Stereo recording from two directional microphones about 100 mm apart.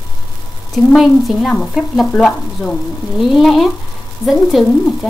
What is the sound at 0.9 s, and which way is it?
Stir, centre (ahead or behind).